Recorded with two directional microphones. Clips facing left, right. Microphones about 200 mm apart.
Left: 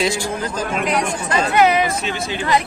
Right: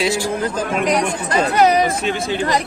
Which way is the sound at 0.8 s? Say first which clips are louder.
Right 2 dB; 40° right (ahead or behind).